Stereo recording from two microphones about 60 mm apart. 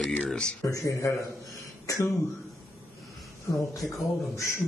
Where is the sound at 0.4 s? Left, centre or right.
Centre.